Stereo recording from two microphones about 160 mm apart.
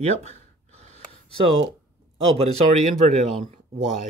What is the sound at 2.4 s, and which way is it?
Speech, 40° right (ahead or behind).